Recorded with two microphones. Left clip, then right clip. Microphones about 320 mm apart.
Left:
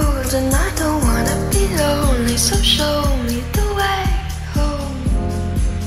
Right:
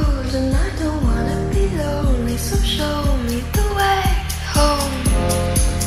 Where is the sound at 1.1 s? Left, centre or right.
Left.